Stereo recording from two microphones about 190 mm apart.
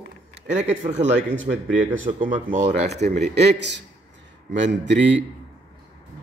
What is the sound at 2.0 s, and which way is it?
Speech, 45° right (ahead or behind).